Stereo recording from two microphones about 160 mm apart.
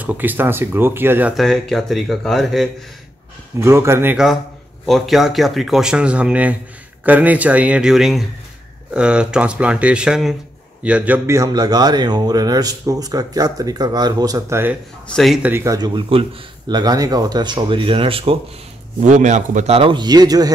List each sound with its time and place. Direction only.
0.0 s speech: 10° right (ahead or behind)
1.3 s speech: centre (ahead or behind)
3.5 s speech: 15° right (ahead or behind)
4.8 s a man's voice: centre (ahead or behind)
15.1 s speech: centre (ahead or behind)
15.5 s a man's voice: 20° right (ahead or behind); by 18.4 s 35° right (ahead or behind)
18.9 s a man's voice: 50° right (ahead or behind); by 20.5 s 25° right (ahead or behind)